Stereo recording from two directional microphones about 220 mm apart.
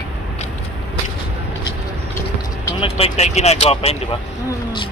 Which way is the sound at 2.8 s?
30° left (ahead or behind).